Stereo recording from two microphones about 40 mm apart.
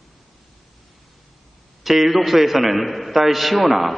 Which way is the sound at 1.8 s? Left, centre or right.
Centre.